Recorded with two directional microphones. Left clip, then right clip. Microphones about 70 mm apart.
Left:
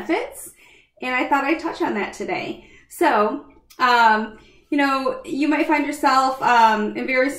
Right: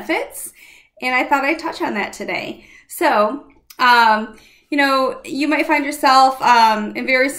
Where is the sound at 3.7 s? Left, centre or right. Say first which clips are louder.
Right 3 dB; right.